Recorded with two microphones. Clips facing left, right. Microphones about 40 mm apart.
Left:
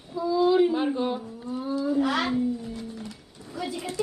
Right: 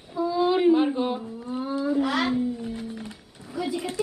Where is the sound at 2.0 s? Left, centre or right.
Centre.